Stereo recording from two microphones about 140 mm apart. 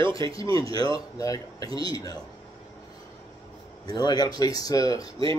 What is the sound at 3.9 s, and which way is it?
Speech, 30° left (ahead or behind).